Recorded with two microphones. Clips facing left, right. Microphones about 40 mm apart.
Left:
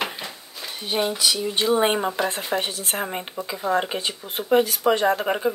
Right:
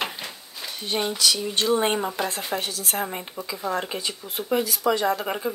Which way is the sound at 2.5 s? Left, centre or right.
Left.